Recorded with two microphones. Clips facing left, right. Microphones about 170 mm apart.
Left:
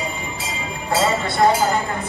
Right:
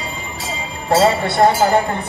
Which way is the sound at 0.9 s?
65° right (ahead or behind).